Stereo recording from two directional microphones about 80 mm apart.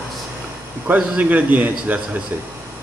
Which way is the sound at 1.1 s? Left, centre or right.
Centre.